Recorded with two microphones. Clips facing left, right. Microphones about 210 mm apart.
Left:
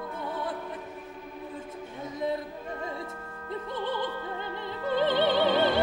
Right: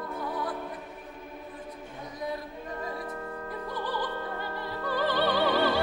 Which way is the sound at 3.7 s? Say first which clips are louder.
Left 1 dB; 25° left (ahead or behind).